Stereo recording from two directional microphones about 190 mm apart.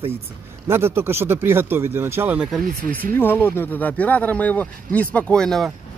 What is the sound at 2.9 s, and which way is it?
Speech, 10° left (ahead or behind).